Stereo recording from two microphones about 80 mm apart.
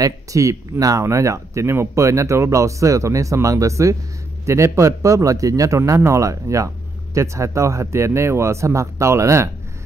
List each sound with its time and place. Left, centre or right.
0.0 s speech: right